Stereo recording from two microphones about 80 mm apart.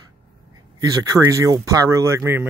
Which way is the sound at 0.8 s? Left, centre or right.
Right.